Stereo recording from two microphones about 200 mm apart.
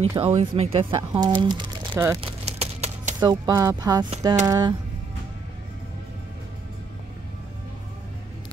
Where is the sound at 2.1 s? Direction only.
30° right (ahead or behind).